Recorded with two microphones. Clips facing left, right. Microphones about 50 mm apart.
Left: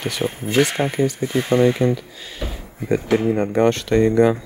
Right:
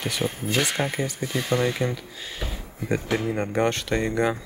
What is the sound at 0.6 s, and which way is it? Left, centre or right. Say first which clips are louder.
Speech: left 8 dB; left.